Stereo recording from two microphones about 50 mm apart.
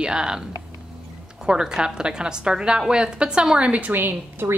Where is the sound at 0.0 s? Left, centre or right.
Centre.